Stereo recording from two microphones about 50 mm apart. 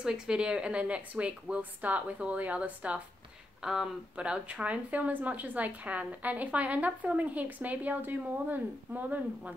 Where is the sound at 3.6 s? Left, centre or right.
Centre.